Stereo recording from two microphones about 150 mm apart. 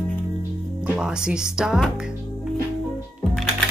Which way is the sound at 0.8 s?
5° right (ahead or behind).